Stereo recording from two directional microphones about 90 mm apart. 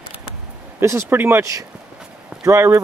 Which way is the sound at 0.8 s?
30° right (ahead or behind).